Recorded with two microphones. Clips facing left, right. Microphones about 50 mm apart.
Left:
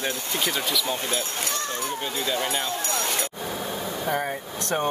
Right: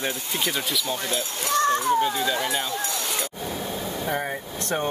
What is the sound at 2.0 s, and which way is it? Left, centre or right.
Speech, centre.